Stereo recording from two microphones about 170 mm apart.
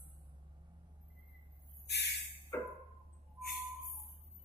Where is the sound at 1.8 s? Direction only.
80° left.